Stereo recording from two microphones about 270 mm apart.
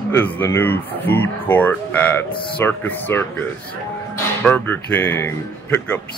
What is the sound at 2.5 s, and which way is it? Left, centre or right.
Speech, centre.